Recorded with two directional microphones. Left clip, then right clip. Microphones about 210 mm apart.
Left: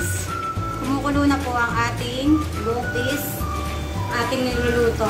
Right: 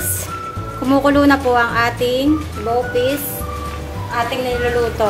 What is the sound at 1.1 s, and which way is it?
Speech, 45° right (ahead or behind).